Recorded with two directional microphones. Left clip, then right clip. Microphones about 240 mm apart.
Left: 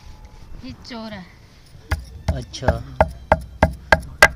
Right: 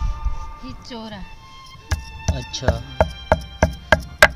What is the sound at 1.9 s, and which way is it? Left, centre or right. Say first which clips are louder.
Music: even; centre.